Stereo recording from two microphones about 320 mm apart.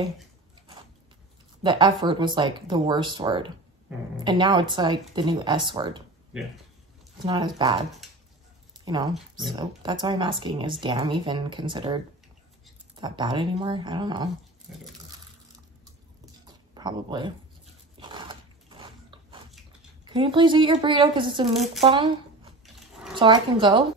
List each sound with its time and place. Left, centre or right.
1.6 s speech: centre
7.2 s speech: centre
8.8 s speech: centre
16.4 s a sound: centre
17.9 s biting: centre
20.1 s speech: centre